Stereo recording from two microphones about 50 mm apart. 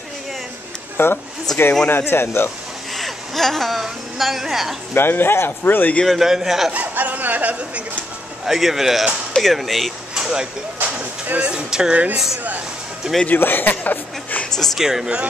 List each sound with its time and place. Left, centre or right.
0.9 s speech: left
1.5 s speech: centre
1.9 s speech: left
3.0 s a woman's voice: centre
4.9 s speech: left
6.0 s a man's voice: centre
6.7 s speech: right
8.5 s a man's voice: centre
10.1 s a sound: centre
11.2 s speech: right
11.5 s speech: centre
11.9 s speech: right
13.3 s a man's voice: left
14.8 s speech: centre